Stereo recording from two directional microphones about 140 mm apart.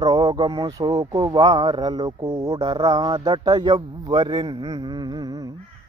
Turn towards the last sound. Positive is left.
turn(degrees=-25)  # may be behind; listen again after turning